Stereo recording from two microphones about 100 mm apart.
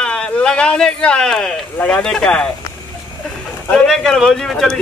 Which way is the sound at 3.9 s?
Centre (ahead or behind).